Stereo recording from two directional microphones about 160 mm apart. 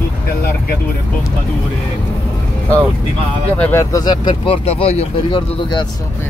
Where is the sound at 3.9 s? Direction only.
25° left (ahead or behind).